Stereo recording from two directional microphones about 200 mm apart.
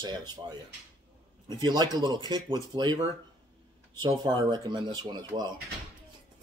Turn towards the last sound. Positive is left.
turn(degrees=-20)  # may be behind; listen again after turning